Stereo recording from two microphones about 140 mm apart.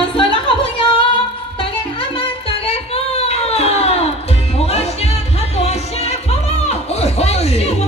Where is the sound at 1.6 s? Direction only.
40° left (ahead or behind).